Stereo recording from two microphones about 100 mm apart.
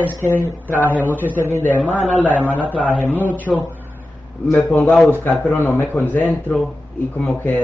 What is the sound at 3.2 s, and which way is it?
A man's voice, 15° left (ahead or behind).